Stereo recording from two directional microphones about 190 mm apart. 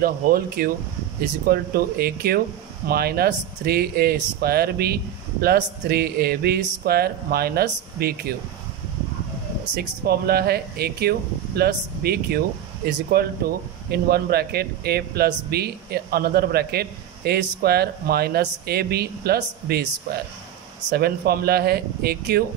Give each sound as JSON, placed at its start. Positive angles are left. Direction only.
{"t": 0.0, "sound": "speech", "side_deg": -55}
{"t": 9.8, "sound": "speech", "side_deg": -55}